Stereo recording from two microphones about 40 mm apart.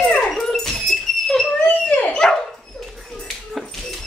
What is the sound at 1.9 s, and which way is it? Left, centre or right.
Dog, left.